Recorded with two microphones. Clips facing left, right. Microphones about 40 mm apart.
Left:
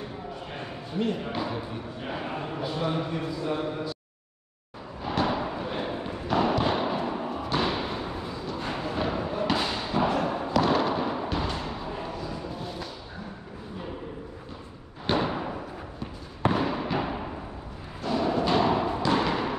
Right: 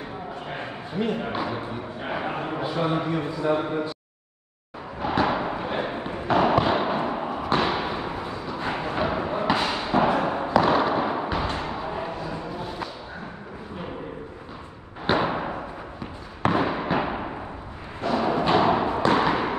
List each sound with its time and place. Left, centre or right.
1.4 s a man's voice: centre
5.2 s a sound: right
7.6 s thump: right
8.8 s a sound: right
11.4 s music: right
15.0 s thump: right
16.5 s fireworks: right
18.0 s music: right
18.9 s a sound: right